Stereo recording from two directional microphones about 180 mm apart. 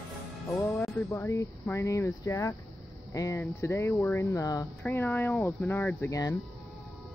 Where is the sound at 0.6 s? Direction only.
15° left (ahead or behind).